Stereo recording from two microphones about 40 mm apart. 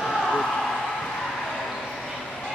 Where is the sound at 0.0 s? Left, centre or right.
Centre.